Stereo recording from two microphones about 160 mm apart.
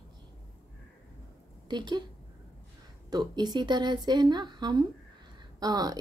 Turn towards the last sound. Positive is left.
turn(degrees=-25)  # may be behind; listen again after turning